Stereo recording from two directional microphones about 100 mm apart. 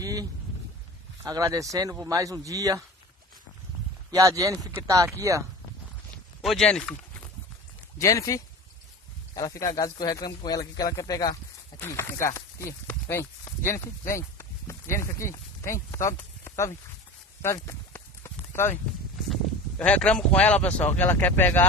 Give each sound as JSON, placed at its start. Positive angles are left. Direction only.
{"t": 0.0, "sound": "a sound", "side_deg": -40}
{"t": 1.2, "sound": "speech", "side_deg": -35}
{"t": 4.1, "sound": "speech", "side_deg": -35}
{"t": 6.4, "sound": "speech", "side_deg": 5}
{"t": 8.0, "sound": "speech", "side_deg": 30}
{"t": 11.9, "sound": "speech", "side_deg": 30}
{"t": 17.4, "sound": "a sound", "side_deg": 30}
{"t": 19.2, "sound": "speech", "side_deg": 5}